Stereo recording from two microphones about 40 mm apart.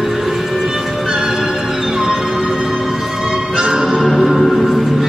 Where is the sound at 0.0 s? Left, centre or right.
Centre.